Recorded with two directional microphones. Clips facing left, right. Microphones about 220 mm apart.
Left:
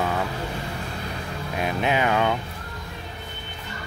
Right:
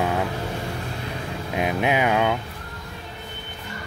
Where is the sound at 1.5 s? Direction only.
15° right (ahead or behind).